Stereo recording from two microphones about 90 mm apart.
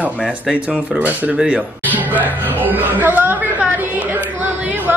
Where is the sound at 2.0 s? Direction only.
20° right (ahead or behind).